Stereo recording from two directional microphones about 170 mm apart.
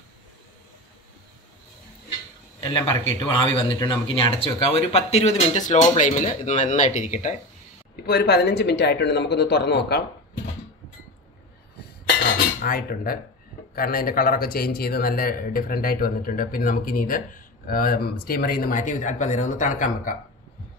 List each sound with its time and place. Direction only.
2.6 s speech: 30° left (ahead or behind)
7.9 s speech: 65° left (ahead or behind)
12.6 s speech: 55° left (ahead or behind)